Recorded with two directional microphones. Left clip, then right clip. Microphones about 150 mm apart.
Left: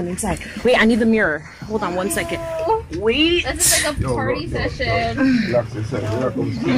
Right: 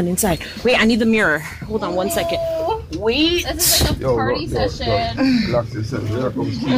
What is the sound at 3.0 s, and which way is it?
Speech, 5° right (ahead or behind).